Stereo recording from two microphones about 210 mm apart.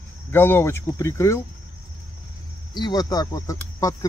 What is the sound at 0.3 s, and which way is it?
Speech, 10° left (ahead or behind).